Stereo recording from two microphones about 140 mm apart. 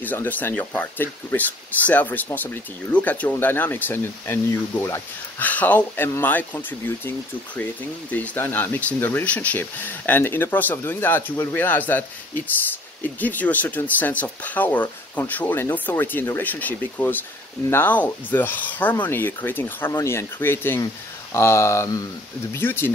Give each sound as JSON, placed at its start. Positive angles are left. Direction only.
{"t": 0.0, "sound": "speech", "side_deg": 15}
{"t": 8.1, "sound": "speech", "side_deg": 15}
{"t": 13.0, "sound": "speech", "side_deg": 10}